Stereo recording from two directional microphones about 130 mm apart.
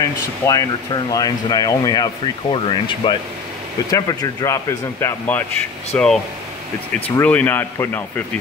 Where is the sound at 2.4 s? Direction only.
45° left (ahead or behind).